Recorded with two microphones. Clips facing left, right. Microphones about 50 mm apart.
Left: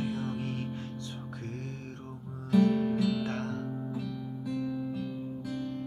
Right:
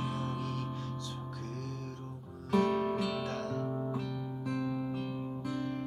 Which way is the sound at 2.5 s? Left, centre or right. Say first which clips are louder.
Left 3 dB; right.